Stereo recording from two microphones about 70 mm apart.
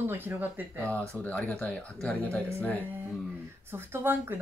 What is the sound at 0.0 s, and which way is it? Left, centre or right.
Speech, right.